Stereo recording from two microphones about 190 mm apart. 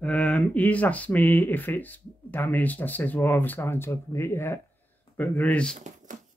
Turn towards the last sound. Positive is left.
turn(degrees=-40)  # may be behind; listen again after turning